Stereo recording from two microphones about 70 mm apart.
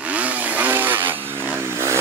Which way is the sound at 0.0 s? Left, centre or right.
Right.